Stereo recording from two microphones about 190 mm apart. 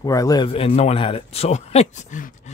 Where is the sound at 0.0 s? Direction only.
20° left (ahead or behind).